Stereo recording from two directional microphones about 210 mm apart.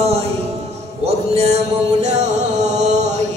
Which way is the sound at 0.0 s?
30° right (ahead or behind).